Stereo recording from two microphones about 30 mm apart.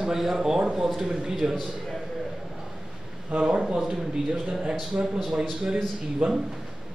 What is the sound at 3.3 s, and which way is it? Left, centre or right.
Speech, right.